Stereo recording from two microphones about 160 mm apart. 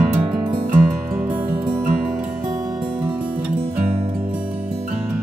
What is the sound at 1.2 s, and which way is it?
Music, 10° right (ahead or behind).